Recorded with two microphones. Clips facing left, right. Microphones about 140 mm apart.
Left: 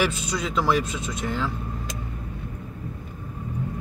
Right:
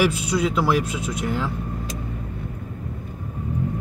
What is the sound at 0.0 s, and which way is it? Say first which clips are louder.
Speech: right 5 dB; 10° right (ahead or behind).